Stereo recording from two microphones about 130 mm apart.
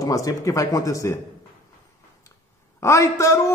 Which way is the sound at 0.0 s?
25° left (ahead or behind).